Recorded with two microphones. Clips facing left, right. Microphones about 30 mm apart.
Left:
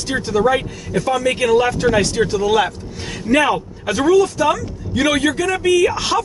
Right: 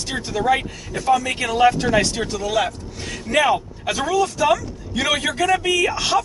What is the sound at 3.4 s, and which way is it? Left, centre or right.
Speech, centre.